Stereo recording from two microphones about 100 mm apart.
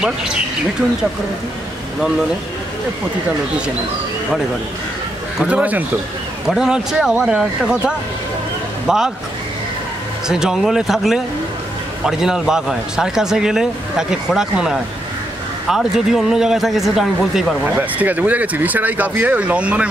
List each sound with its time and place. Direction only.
0.0 s speech: 5° right (ahead or behind)
5.4 s speech: 15° right (ahead or behind)
10.2 s speech: 5° right (ahead or behind)
17.7 s speech: 15° right (ahead or behind)